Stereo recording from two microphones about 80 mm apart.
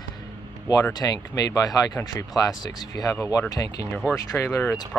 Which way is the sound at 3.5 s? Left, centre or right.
Left.